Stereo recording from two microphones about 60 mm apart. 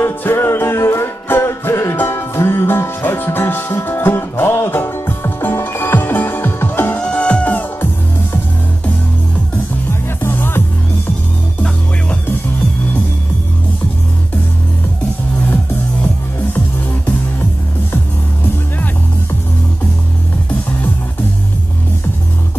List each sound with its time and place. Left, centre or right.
0.0 s music: left
7.0 s music: centre
9.8 s music: left